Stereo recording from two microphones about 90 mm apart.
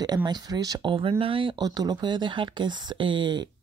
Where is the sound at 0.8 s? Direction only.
80° right.